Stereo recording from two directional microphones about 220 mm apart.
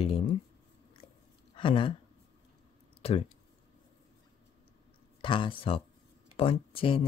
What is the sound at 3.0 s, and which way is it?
Speech, 25° left (ahead or behind).